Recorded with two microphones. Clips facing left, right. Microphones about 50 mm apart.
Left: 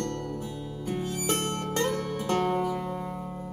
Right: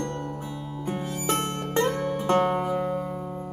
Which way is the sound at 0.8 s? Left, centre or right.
Right.